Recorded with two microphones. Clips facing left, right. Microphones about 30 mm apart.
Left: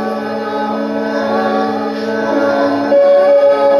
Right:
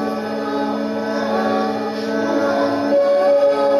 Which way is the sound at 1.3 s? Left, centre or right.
Centre.